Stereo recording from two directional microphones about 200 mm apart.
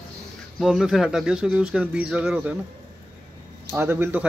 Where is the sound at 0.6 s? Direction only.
Centre (ahead or behind).